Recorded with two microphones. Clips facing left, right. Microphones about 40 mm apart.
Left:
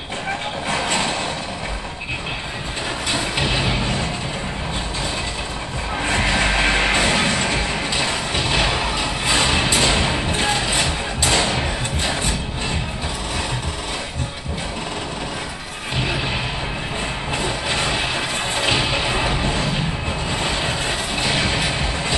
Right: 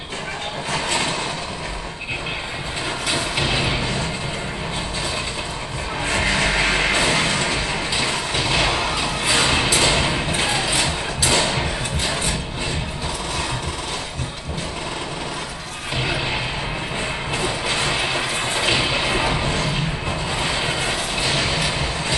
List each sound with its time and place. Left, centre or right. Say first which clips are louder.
3.3 s vehicle: even; centre
6.0 s music: left 1 dB; left
7.0 s music: left 1 dB; centre
10.1 s a sound: left 1 dB; centre
11.2 s music: even; centre
17.4 s music: even; centre
20.2 s vehicle: even; centre
20.8 s music: even; centre